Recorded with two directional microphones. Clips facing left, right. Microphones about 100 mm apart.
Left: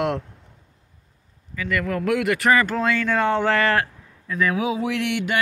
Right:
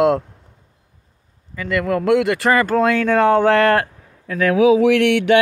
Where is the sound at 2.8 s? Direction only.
45° right (ahead or behind).